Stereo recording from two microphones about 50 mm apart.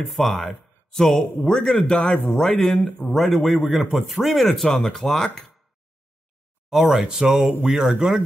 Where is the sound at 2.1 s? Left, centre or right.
Left.